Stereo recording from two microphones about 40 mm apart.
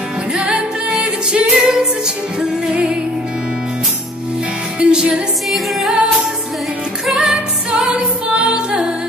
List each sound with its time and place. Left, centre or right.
0.3 s music: right
2.7 s music: right
4.7 s music: right
5.5 s music: centre
7.2 s music: centre